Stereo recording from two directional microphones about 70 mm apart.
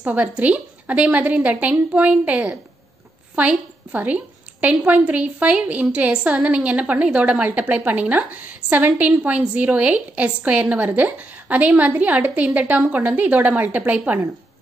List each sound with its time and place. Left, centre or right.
0.0 s a woman's voice: right